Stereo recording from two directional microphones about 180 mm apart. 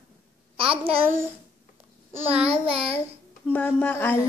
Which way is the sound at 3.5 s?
10° left (ahead or behind).